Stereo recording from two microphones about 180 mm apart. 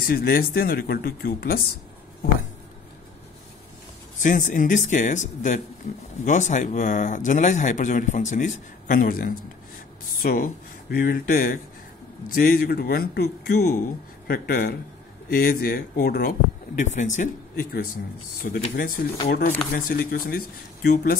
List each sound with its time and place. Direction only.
0.0 s speech: 55° left (ahead or behind)
4.2 s speech: 45° left (ahead or behind)